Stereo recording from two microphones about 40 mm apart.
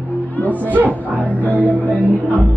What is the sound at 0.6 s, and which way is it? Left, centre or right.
Speech, right.